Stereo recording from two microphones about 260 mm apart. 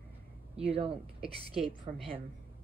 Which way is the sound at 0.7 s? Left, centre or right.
Right.